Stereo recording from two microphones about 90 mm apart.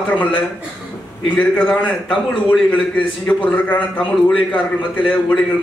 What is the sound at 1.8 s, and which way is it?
A man's voice, 15° left (ahead or behind).